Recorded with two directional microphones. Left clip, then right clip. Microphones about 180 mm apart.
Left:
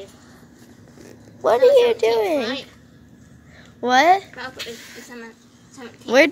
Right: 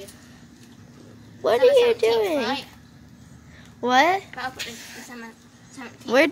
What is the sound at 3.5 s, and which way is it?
Speech, 10° left (ahead or behind).